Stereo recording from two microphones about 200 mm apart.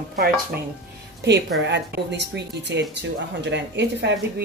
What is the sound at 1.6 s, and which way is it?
A woman's voice, 60° right (ahead or behind).